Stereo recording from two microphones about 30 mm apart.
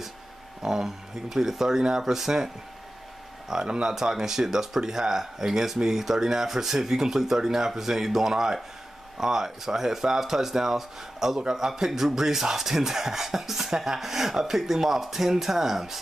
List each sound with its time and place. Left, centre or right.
0.6 s speech: centre